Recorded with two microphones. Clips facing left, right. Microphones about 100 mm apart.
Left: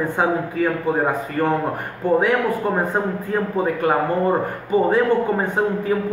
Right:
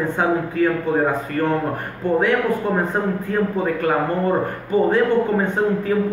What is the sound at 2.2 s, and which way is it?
Speech, 10° left (ahead or behind).